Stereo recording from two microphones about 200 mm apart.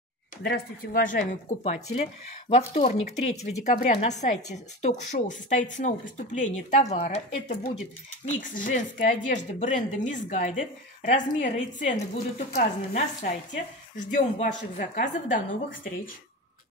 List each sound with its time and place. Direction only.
0.4 s speech: 50° left (ahead or behind)